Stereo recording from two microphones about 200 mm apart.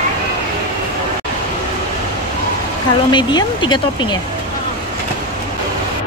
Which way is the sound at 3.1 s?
20° left (ahead or behind).